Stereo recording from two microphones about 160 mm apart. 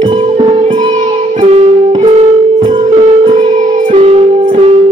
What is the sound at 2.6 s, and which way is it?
Music, 30° right (ahead or behind).